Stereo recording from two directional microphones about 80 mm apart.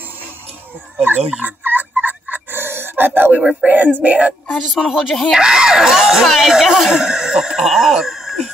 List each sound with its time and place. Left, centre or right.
1.0 s turkey: right
4.0 s speech: centre
4.5 s speech: centre
5.3 s speech: centre